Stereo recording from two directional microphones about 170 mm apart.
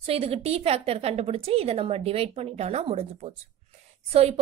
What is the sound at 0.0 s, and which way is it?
Speech, 35° right (ahead or behind).